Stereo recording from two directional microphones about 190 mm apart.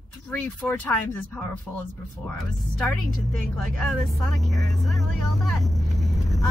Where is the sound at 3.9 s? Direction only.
Centre (ahead or behind).